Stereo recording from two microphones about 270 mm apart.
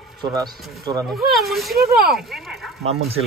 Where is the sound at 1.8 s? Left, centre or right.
Right.